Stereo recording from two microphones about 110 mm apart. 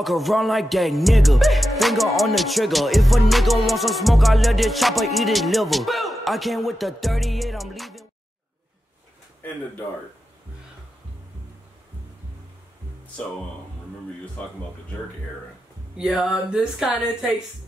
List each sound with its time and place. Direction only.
0.0 s music: centre (ahead or behind)
9.4 s speech: 15° left (ahead or behind)
14.4 s speech: 10° left (ahead or behind)
16.0 s speech: 5° right (ahead or behind)